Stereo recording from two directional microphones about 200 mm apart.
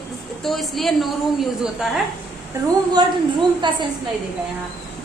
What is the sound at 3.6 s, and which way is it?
Speech, 25° right (ahead or behind).